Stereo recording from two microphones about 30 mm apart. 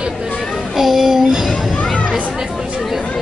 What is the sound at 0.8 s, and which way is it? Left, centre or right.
Speech, centre.